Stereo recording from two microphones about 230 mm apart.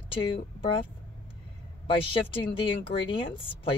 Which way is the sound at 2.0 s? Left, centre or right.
Left.